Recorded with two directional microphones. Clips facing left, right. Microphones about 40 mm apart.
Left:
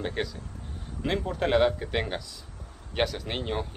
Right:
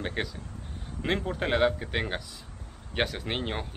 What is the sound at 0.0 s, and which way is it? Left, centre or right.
Speech, centre.